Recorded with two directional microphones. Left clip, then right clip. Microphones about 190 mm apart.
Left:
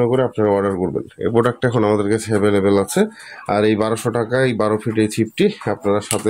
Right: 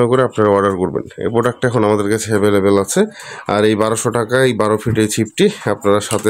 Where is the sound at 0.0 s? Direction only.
20° right (ahead or behind).